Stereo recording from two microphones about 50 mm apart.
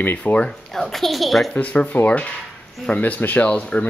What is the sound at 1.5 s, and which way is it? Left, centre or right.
Speech, left.